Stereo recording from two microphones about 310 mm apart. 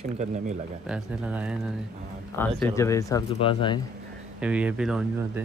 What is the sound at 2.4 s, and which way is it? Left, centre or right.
Speech, centre.